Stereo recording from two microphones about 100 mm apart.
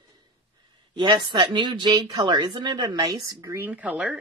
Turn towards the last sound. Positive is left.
turn(degrees=-10)  # may be behind; listen again after turning